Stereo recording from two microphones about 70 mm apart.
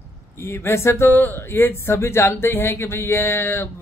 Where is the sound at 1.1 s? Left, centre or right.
Left.